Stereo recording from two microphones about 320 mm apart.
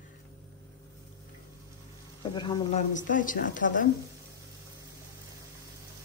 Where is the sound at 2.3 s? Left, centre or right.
Centre.